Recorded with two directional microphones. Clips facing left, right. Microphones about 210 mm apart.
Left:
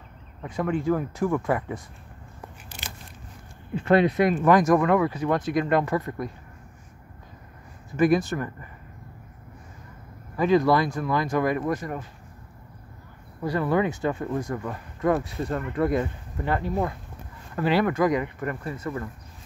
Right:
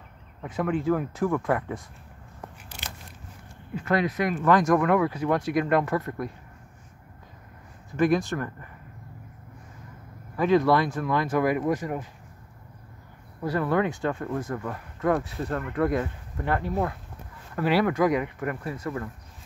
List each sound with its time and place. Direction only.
0.4 s speech: 5° right (ahead or behind)
3.7 s speech: 30° left (ahead or behind)
4.5 s speech: 10° left (ahead or behind)
4.7 s speech: centre (ahead or behind)
7.9 s speech: 5° left (ahead or behind)
10.3 s speech: centre (ahead or behind)
13.5 s speech: 5° left (ahead or behind)